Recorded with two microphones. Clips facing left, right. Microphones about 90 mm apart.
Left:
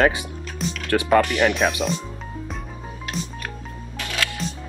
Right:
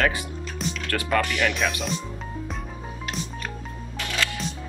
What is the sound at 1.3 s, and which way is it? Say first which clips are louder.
Speech: left 5 dB; 30° left (ahead or behind).